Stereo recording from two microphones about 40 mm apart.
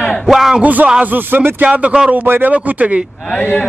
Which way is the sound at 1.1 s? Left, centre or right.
Right.